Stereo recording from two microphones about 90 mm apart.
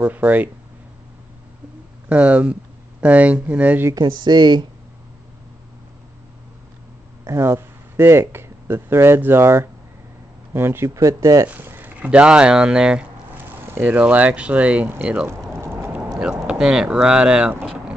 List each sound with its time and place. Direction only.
0.0 s speech: 20° right (ahead or behind)
2.0 s speech: 15° right (ahead or behind)
3.9 s speech: 55° right (ahead or behind)
7.2 s speech: 30° right (ahead or behind)
11.4 s a sound: 20° right (ahead or behind)
12.0 s speech: 10° right (ahead or behind)
13.6 s speech: 25° right (ahead or behind)
15.5 s a sound: 30° right (ahead or behind)
16.4 s speech: 5° right (ahead or behind)